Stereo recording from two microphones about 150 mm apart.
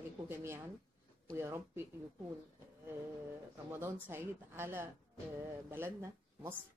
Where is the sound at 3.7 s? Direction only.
15° right (ahead or behind).